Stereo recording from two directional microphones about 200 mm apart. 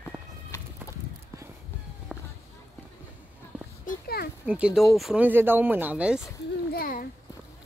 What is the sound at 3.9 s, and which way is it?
Oink, 50° left (ahead or behind).